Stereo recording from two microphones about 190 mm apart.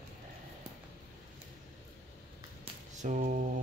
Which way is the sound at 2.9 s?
40° right (ahead or behind).